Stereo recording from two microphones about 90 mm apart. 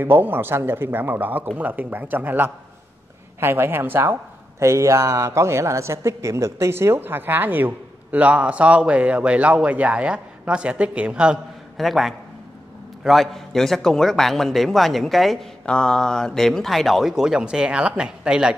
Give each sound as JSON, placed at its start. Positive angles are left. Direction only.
{"t": 0.0, "sound": "speech", "side_deg": -25}
{"t": 11.7, "sound": "speech", "side_deg": 0}
{"t": 15.6, "sound": "speech", "side_deg": 10}